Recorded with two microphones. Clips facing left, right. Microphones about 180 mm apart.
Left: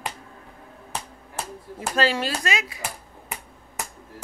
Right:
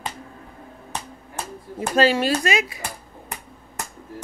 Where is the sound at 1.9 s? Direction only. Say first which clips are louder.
Right 5 dB; 15° right (ahead or behind).